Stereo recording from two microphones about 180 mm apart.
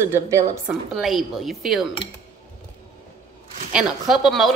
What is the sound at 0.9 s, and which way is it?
Speech, centre (ahead or behind).